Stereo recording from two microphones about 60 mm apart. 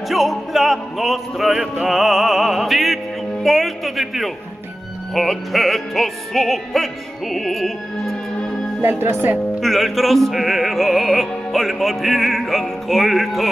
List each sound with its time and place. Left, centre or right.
0.1 s music: centre
8.8 s speech: right
9.6 s music: centre